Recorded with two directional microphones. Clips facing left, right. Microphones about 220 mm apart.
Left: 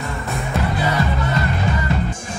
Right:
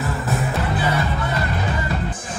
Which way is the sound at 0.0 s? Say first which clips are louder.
Right 3 dB; centre (ahead or behind).